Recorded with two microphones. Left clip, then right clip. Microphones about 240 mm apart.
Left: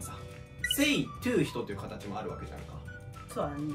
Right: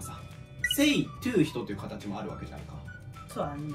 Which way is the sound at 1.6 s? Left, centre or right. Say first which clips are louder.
Even; centre.